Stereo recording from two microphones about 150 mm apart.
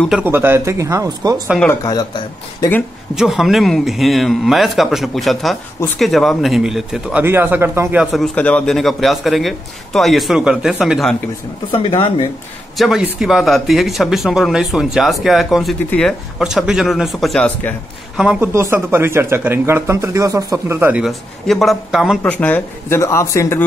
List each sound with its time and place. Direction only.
0.1 s speech: 15° right (ahead or behind)
1.8 s speech: 25° left (ahead or behind)
3.2 s speech: centre (ahead or behind)
8.0 s speech: centre (ahead or behind)
11.7 s speech: 35° left (ahead or behind)
12.7 s speech: centre (ahead or behind)
18.1 s a woman's voice: 5° right (ahead or behind)
18.5 s speech: 15° right (ahead or behind)
21.0 s speech: centre (ahead or behind)
22.2 s speech: 10° left (ahead or behind)